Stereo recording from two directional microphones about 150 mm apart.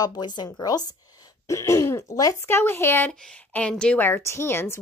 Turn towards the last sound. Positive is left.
turn(degrees=15)  # may be behind; listen again after turning